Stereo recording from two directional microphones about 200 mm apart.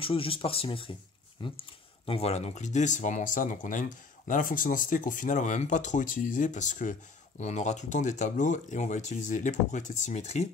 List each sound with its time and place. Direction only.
0.0 s speech: 25° left (ahead or behind)